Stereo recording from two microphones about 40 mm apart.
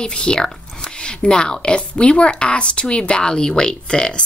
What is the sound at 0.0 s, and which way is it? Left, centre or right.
A woman's voice, left.